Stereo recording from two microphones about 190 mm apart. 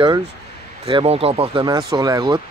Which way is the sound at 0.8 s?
30° right (ahead or behind).